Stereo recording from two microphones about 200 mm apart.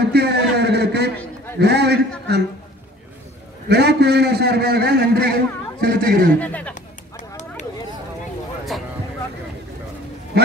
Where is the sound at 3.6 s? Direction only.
55° right (ahead or behind).